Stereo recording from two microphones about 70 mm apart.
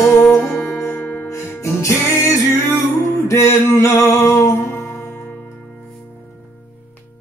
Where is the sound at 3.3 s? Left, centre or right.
Left.